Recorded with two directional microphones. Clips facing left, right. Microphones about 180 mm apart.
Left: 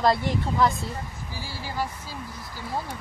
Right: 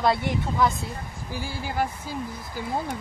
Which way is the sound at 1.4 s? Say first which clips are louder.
Right 3 dB; 50° right (ahead or behind).